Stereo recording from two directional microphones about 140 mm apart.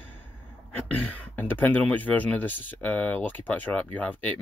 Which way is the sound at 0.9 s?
10° left (ahead or behind).